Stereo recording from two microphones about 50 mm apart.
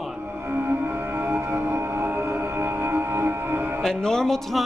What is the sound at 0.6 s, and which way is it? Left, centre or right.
Music, right.